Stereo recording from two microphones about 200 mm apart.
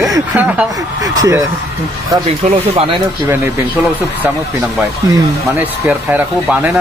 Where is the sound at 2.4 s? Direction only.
30° right (ahead or behind).